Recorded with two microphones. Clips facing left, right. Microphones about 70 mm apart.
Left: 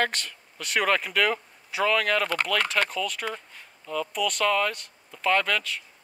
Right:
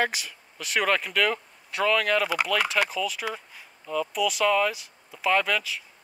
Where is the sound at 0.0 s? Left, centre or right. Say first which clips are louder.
Even; centre.